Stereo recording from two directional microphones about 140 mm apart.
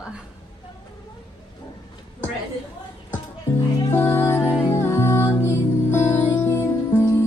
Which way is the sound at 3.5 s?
20° left (ahead or behind).